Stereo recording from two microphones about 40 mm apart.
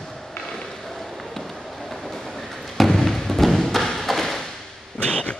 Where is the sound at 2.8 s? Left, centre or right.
Centre.